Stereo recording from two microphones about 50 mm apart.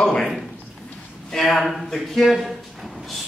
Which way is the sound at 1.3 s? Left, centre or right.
Centre.